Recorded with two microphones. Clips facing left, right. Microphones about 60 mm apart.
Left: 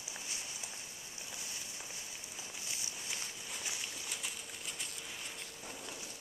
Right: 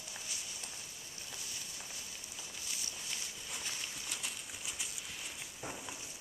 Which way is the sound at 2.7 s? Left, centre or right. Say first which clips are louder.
Right 1 dB; left.